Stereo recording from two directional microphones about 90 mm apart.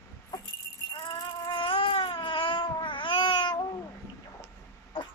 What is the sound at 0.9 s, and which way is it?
Baby cry, 55° left (ahead or behind).